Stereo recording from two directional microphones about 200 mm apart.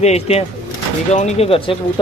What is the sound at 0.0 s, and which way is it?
Speech, 30° left (ahead or behind).